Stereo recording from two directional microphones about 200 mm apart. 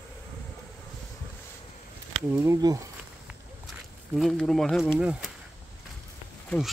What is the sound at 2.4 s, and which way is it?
Speech, 15° right (ahead or behind).